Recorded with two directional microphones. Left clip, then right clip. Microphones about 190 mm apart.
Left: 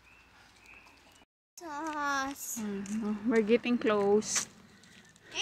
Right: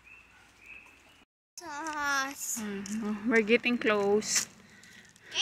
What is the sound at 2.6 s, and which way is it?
Speech, 10° left (ahead or behind).